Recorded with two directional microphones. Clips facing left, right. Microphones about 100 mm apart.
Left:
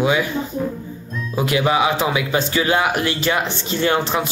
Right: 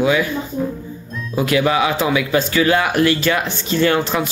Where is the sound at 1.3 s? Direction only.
25° left (ahead or behind).